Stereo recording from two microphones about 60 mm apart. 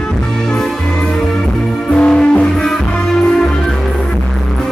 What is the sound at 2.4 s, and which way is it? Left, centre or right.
Music, centre.